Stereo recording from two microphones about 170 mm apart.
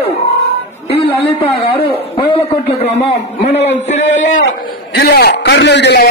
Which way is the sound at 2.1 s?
30° left (ahead or behind).